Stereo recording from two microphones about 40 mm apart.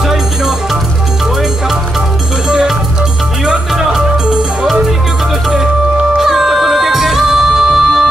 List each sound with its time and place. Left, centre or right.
3.4 s music: centre
6.1 s music: centre